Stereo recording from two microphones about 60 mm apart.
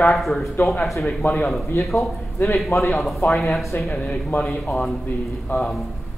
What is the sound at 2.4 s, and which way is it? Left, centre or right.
Speech, left.